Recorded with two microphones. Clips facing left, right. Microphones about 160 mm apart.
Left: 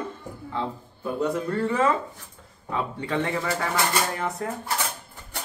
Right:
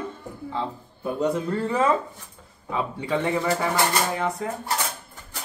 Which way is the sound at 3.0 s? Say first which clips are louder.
Right 4 dB; 15° right (ahead or behind).